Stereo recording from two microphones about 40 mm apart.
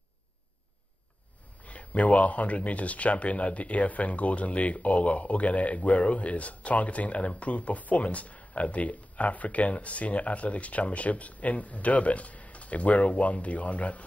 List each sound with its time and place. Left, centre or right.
1.6 s speech: left